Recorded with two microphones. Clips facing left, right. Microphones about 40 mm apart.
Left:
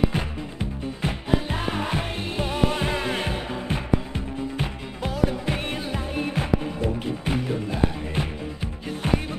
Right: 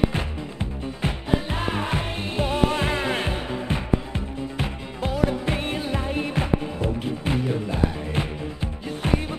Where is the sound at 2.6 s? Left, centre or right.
Centre.